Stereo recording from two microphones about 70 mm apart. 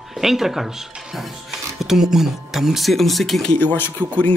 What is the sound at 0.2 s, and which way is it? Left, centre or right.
Speech, centre.